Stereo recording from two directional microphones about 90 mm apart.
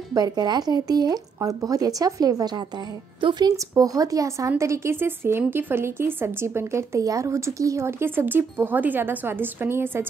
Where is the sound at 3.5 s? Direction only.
40° right (ahead or behind).